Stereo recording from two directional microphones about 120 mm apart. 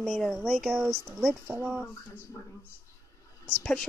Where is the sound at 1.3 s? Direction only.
15° right (ahead or behind).